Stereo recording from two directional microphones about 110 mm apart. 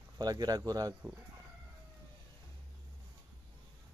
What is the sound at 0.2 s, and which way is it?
Speech, 35° right (ahead or behind).